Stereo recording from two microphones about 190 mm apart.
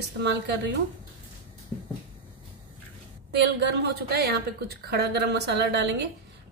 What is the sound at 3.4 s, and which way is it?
A woman's voice, 65° right (ahead or behind).